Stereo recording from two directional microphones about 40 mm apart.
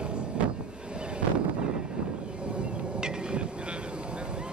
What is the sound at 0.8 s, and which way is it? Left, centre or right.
Vehicle, right.